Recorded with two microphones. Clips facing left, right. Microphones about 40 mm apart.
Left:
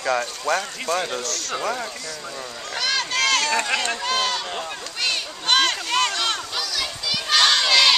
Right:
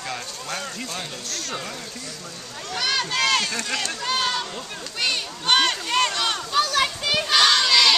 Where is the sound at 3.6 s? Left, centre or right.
Left.